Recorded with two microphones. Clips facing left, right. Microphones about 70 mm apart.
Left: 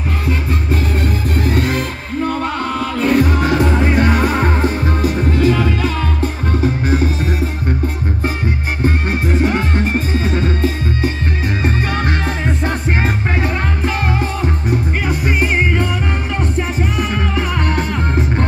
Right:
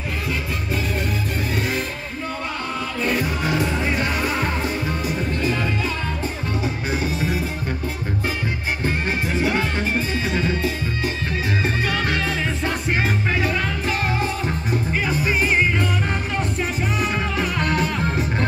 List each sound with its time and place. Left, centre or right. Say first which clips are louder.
1.5 s music: left 7 dB; left
3.0 s music: left 9 dB; left
5.0 s music: left 11 dB; left
6.6 s music: left 9 dB; left
8.8 s music: left 6 dB; left
15.0 s music: left 3 dB; left
17.4 s music: left 1 dB; left